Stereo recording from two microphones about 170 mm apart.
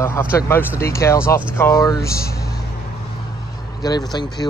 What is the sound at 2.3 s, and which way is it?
Vehicle, 65° left (ahead or behind).